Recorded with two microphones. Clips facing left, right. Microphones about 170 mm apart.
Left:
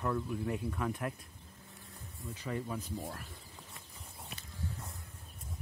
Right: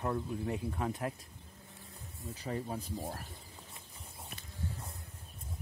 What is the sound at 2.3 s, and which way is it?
Speech, 35° right (ahead or behind).